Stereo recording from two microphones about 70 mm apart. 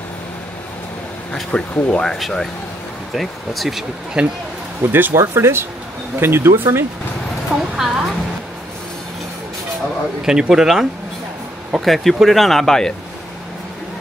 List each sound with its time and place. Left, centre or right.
1.3 s speech: centre
3.2 s speech: centre
4.8 s speech: right
7.7 s speech: centre
10.2 s speech: centre